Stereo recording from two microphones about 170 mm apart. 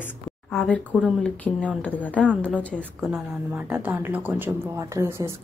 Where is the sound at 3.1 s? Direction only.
10° right (ahead or behind).